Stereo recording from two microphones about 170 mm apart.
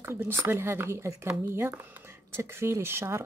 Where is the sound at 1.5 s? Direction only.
15° right (ahead or behind).